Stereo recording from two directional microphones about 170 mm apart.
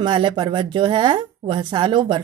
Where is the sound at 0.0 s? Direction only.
25° right (ahead or behind).